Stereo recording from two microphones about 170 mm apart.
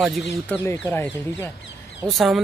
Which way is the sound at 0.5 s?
15° left (ahead or behind).